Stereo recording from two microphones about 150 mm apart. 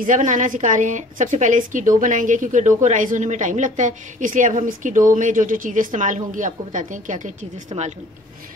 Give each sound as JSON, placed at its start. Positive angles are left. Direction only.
{"t": 0.0, "sound": "a woman's voice", "side_deg": -60}